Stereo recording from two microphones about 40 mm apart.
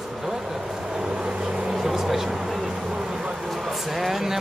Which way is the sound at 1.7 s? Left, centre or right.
Centre.